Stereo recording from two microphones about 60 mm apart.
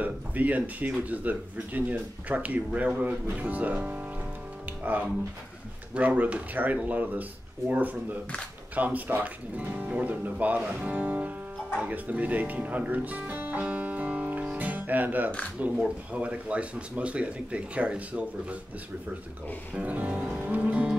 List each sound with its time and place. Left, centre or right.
0.0 s speech: right
19.7 s speech: right